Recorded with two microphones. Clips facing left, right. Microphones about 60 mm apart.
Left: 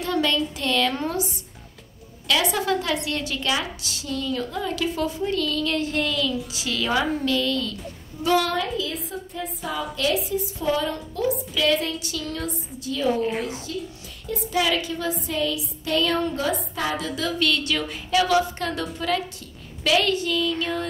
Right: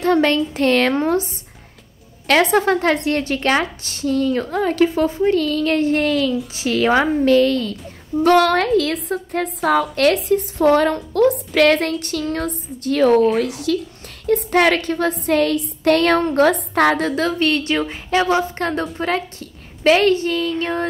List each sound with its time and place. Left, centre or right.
0.0 s a woman's voice: right
8.2 s a woman's voice: right
13.7 s a child's voice: right
14.2 s a woman's voice: right
17.4 s a woman's voice: right